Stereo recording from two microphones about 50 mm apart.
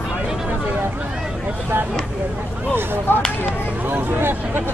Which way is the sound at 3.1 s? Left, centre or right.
Left.